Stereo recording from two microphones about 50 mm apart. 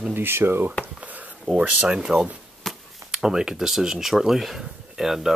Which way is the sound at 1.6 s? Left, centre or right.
Right.